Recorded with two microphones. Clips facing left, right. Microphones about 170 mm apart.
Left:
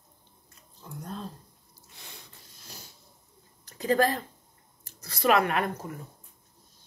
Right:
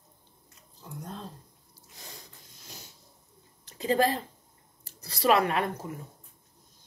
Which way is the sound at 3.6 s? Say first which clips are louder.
Left 1 dB; 25° right (ahead or behind).